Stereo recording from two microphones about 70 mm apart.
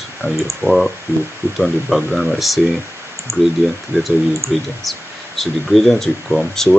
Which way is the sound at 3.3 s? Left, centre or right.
Right.